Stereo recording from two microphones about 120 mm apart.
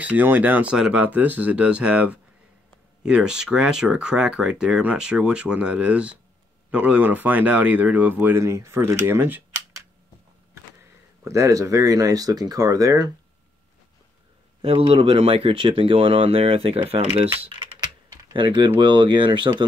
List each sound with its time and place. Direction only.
0.0 s speech: 15° right (ahead or behind)
11.2 s speech: 25° right (ahead or behind)
14.6 s speech: 55° right (ahead or behind)
18.3 s speech: 40° right (ahead or behind)